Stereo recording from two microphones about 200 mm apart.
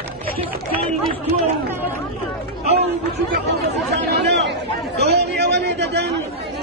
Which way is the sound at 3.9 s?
55° right (ahead or behind).